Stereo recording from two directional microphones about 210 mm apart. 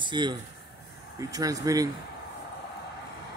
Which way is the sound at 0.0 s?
20° right (ahead or behind).